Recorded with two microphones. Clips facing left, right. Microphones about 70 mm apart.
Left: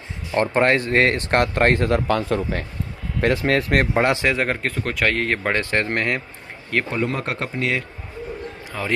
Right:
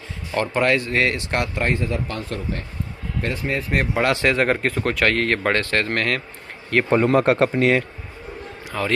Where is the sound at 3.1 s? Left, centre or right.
Left.